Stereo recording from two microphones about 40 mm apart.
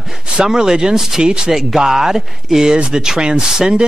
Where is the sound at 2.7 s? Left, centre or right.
Centre.